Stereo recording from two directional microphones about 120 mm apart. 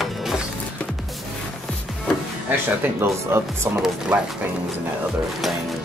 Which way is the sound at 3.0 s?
20° right (ahead or behind).